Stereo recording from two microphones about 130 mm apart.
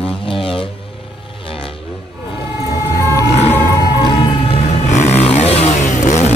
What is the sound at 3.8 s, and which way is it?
Music, 30° left (ahead or behind).